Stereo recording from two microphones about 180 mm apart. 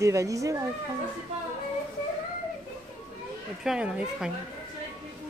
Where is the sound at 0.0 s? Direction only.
15° right (ahead or behind).